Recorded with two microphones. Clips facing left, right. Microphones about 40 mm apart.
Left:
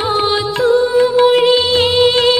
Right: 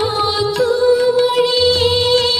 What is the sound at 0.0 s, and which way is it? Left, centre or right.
Music, left.